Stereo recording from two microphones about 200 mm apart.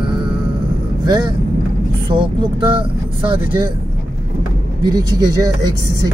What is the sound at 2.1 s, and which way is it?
Speech, 25° right (ahead or behind).